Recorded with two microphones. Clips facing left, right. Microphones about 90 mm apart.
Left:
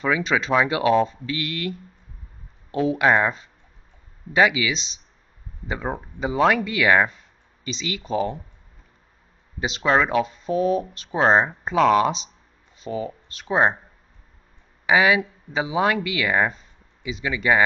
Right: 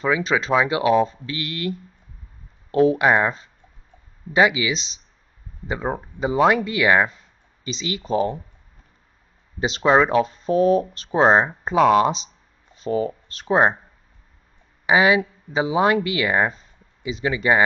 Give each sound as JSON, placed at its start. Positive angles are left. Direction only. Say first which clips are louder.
{"t": 0.2, "sound": "speech", "louder": "right 1 dB", "side_deg": -35}
{"t": 0.7, "sound": "speech", "louder": "right 1 dB", "side_deg": -20}
{"t": 2.7, "sound": "speech", "louder": "right 6 dB", "side_deg": -35}
{"t": 3.0, "sound": "speech", "louder": "right 1 dB", "side_deg": -10}
{"t": 4.4, "sound": "speech", "louder": "right 1 dB", "side_deg": -25}
{"t": 5.7, "sound": "speech", "louder": "right 2 dB", "side_deg": -15}
{"t": 6.6, "sound": "speech", "louder": "right 1 dB", "side_deg": -25}
{"t": 6.9, "sound": "speech", "louder": "even", "side_deg": -10}
{"t": 7.6, "sound": "speech", "louder": "right 2 dB", "side_deg": -30}
{"t": 9.6, "sound": "speech", "louder": "right 3 dB", "side_deg": -35}
{"t": 11.1, "sound": "speech", "louder": "right 2 dB", "side_deg": -20}
{"t": 12.7, "sound": "speech", "louder": "right 6 dB", "side_deg": -40}
{"t": 14.9, "sound": "speech", "louder": "right 1 dB", "side_deg": -25}